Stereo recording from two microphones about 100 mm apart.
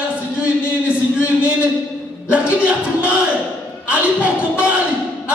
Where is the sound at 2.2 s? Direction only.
10° right (ahead or behind).